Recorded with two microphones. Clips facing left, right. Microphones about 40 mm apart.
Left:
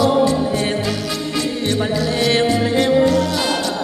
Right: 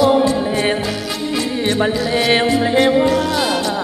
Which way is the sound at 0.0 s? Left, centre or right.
Centre.